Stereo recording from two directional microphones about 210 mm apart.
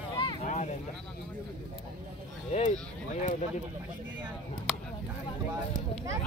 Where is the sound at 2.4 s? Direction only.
30° left (ahead or behind).